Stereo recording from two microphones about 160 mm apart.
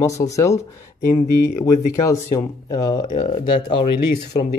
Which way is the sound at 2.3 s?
25° left (ahead or behind).